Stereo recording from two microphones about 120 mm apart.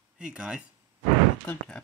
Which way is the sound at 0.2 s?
5° right (ahead or behind).